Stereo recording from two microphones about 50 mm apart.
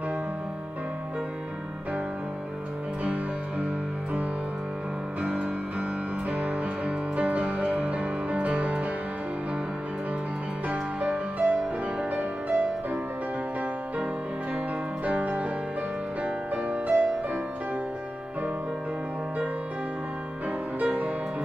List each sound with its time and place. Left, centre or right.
3.0 s music: right
5.2 s music: right
10.7 s music: right
15.0 s music: right
16.6 s music: right
20.8 s music: right